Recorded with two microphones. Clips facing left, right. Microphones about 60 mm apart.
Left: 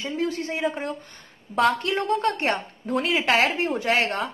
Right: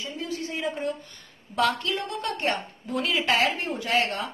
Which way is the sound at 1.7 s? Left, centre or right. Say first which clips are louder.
Left 5 dB; left.